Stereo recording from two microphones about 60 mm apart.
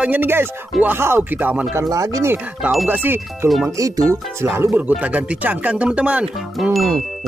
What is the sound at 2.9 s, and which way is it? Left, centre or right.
Speech, right.